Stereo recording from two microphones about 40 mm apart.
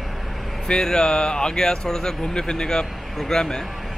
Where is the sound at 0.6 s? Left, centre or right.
Centre.